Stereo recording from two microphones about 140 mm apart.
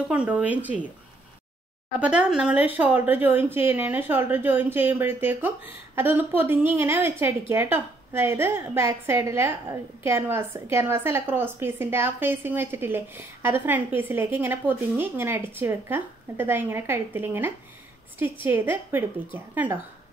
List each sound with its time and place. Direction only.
0.1 s a woman's voice: 10° right (ahead or behind)
2.0 s a woman's voice: 5° right (ahead or behind)